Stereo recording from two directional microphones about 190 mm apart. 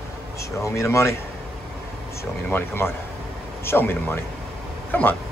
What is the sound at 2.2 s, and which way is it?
Speech, 10° left (ahead or behind).